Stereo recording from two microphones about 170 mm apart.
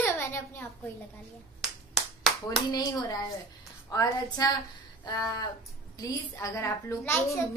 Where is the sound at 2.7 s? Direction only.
20° left (ahead or behind).